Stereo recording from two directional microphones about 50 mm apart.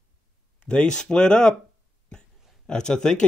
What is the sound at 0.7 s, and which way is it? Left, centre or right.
Speech, centre.